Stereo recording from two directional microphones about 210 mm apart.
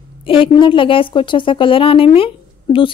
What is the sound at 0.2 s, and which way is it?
A woman's voice, 25° left (ahead or behind).